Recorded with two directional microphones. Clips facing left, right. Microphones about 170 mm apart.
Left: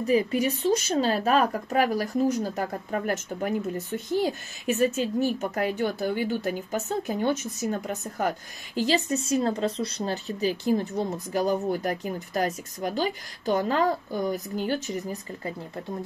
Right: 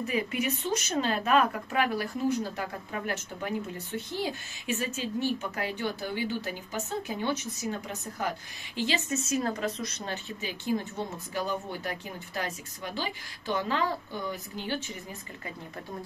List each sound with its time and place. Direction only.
0.0 s speech: 35° left (ahead or behind)